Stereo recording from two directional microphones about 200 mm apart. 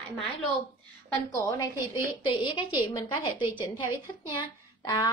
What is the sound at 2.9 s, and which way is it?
Speech, 20° left (ahead or behind).